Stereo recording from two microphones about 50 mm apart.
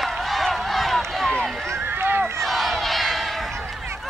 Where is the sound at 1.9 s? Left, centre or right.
Right.